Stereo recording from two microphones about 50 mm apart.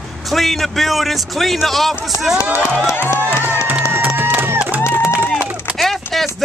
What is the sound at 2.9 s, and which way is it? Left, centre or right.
Speech, left.